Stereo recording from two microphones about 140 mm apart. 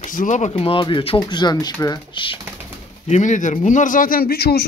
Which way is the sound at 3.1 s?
60° left (ahead or behind).